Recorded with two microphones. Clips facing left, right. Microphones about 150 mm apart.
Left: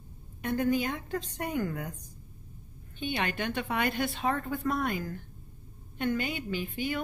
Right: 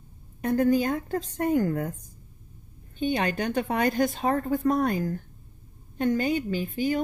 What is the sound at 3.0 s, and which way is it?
A woman's voice, 40° right (ahead or behind).